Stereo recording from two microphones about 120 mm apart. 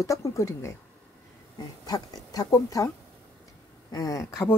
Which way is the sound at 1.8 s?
35° left (ahead or behind).